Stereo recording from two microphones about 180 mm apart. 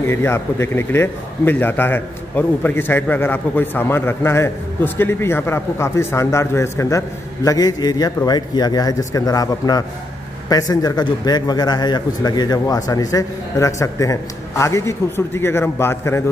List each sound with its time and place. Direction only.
0.0 s a man's voice: 15° left (ahead or behind)